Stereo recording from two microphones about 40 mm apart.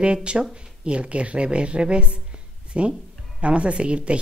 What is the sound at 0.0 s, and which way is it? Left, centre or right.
A woman's voice, right.